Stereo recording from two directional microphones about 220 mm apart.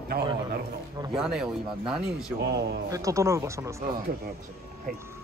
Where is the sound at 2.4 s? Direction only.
50° right (ahead or behind).